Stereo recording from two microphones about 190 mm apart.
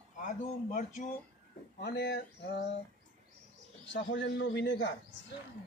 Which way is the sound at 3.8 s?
70° left (ahead or behind).